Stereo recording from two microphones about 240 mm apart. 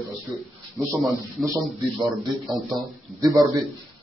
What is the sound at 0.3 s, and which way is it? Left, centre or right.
Speech, centre.